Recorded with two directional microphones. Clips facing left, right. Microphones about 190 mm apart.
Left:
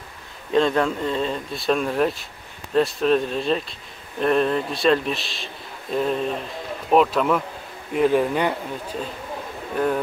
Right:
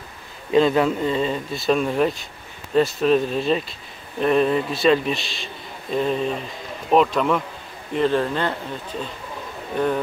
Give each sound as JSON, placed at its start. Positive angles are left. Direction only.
{"t": 0.5, "sound": "a man's voice", "side_deg": -5}